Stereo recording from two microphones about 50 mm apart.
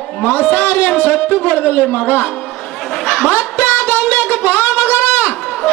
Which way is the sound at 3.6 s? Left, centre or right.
Left.